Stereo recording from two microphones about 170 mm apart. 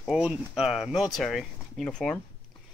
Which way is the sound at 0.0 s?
5° right (ahead or behind).